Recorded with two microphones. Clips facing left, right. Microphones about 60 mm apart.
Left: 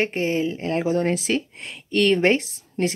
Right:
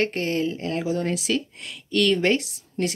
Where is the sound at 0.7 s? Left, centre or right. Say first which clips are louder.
Left 4 dB; left.